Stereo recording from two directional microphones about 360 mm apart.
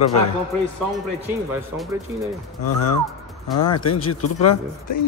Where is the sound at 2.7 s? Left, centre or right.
Left.